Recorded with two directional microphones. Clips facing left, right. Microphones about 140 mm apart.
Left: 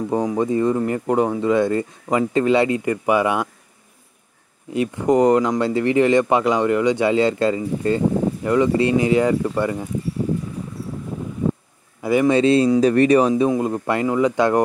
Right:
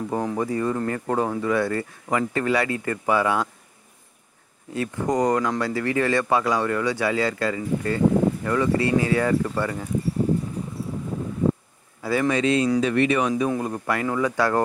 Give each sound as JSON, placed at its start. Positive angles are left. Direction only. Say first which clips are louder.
{"t": 0.1, "sound": "speech", "louder": "left 6 dB", "side_deg": 15}
{"t": 4.7, "sound": "speech", "louder": "left 6 dB", "side_deg": 20}
{"t": 12.0, "sound": "speech", "louder": "left 5 dB", "side_deg": 15}
{"t": 12.3, "sound": "speech", "louder": "left 6 dB", "side_deg": 30}
{"t": 13.5, "sound": "speech", "louder": "left 5 dB", "side_deg": 25}